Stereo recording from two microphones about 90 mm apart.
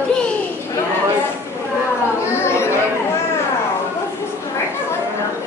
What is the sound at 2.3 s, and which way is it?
Chatter, 30° left (ahead or behind).